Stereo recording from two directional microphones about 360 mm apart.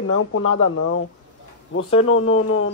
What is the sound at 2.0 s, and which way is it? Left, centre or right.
Speech, left.